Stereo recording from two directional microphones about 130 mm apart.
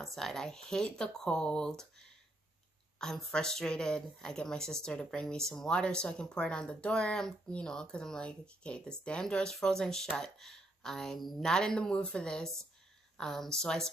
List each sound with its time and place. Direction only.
0.0 s speech: centre (ahead or behind)